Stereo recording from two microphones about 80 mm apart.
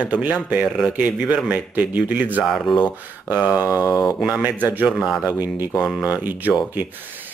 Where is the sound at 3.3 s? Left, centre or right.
Right.